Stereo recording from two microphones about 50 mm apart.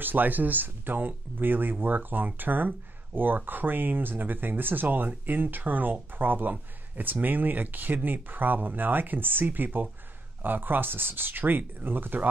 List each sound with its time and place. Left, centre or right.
0.0 s speech: right